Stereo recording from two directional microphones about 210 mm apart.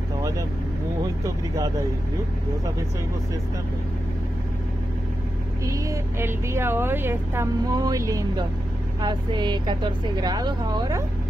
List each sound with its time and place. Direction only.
5.7 s a woman's voice: 15° right (ahead or behind)